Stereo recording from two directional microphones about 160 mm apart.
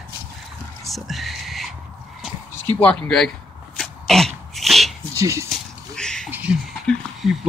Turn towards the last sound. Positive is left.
turn(degrees=0)  # may be behind; listen again after turning